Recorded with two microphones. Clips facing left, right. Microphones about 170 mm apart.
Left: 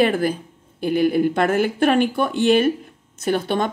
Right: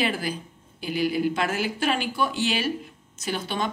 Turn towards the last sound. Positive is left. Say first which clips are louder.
# left 8 dB
turn(degrees=55)  # may be behind; listen again after turning